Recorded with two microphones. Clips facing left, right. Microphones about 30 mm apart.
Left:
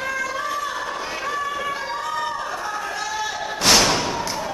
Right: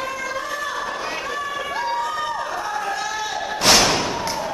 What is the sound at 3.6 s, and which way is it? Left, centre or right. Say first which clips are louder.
Thump: right 1 dB; centre.